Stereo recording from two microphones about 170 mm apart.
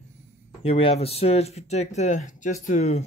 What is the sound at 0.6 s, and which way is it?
Speech, 35° left (ahead or behind).